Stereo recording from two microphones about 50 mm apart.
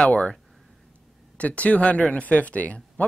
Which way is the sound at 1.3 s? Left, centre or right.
Left.